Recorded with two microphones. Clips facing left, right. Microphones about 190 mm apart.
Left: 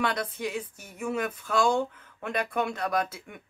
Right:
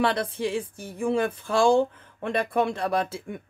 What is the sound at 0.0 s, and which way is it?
Speech, 30° right (ahead or behind).